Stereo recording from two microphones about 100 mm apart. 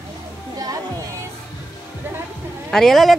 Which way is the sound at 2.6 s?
5° left (ahead or behind).